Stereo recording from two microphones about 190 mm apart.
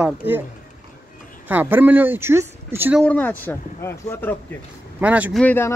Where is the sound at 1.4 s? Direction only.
10° right (ahead or behind).